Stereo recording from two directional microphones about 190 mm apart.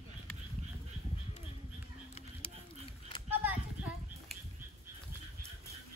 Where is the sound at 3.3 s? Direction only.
10° right (ahead or behind).